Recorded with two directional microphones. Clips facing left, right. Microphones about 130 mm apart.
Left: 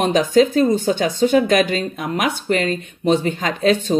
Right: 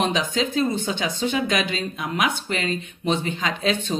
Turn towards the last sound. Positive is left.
turn(degrees=45)  # may be behind; listen again after turning